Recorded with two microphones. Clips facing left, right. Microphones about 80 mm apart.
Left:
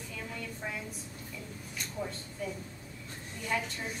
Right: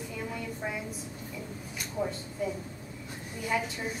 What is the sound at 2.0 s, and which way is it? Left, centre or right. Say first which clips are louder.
A woman's voice: right 6 dB; centre.